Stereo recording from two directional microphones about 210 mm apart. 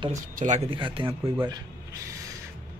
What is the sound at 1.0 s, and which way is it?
Speech, 10° right (ahead or behind).